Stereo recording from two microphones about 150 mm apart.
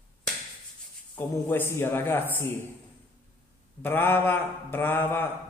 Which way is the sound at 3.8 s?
15° left (ahead or behind).